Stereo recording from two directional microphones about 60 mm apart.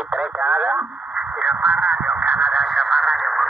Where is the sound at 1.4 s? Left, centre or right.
Right.